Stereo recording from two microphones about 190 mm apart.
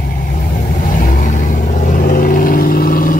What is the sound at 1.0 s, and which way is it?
Vehicle, 45° left (ahead or behind).